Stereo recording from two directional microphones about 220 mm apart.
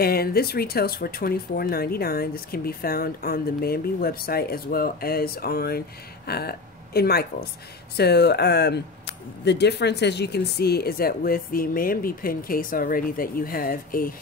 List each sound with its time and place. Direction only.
0.0 s speech: 45° left (ahead or behind)